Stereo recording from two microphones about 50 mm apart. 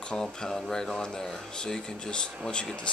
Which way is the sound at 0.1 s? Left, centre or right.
Centre.